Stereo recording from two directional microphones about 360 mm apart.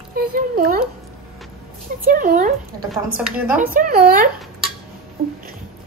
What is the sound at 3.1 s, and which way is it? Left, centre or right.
Speech, centre.